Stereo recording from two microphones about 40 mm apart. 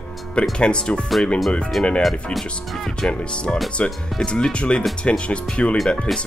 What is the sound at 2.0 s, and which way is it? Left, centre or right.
Speech, centre.